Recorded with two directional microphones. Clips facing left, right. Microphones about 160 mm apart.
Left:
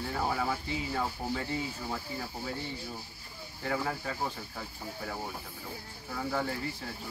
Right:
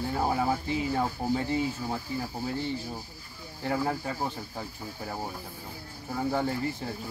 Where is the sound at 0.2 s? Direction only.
30° right (ahead or behind).